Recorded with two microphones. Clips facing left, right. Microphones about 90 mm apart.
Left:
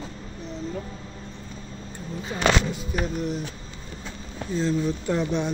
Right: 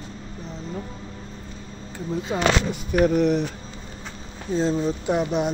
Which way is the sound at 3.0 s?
65° right (ahead or behind).